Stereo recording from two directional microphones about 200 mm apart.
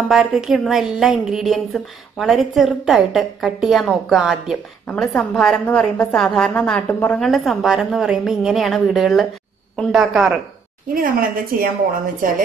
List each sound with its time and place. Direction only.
0.1 s a woman's voice: centre (ahead or behind)
11.0 s a woman's voice: 45° right (ahead or behind)